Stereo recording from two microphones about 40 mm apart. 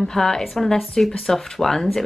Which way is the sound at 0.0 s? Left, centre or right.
Centre.